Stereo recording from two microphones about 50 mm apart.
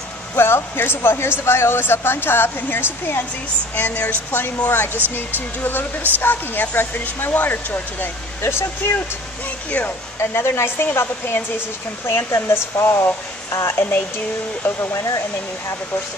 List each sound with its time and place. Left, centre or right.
0.4 s speech: left
3.7 s speech: left
8.4 s speech: left
9.7 s speech: left
10.1 s speech: left
12.4 s speech: left
13.7 s speech: left
14.9 s speech: left